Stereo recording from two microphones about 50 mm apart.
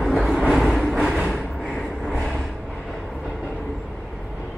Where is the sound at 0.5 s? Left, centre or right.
Centre.